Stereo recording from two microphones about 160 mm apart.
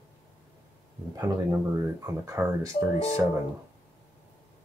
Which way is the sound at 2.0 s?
20° right (ahead or behind).